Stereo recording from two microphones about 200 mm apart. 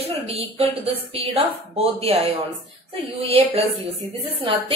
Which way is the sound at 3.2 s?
30° right (ahead or behind).